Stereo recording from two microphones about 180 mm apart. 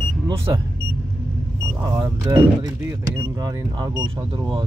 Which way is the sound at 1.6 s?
20° right (ahead or behind).